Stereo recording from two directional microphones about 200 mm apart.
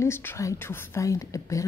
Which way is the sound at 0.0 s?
10° left (ahead or behind).